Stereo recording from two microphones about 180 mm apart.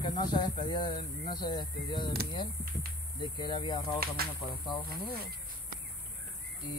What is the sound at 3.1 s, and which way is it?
Speech, 25° left (ahead or behind).